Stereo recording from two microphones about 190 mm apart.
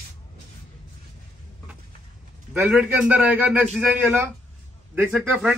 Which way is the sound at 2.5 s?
10° right (ahead or behind).